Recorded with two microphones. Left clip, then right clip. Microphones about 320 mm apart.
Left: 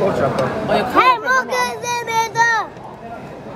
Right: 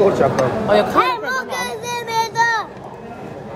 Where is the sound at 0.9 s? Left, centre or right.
Left.